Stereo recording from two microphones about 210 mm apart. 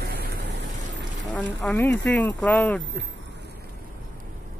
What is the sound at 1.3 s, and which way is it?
Speech, 5° left (ahead or behind).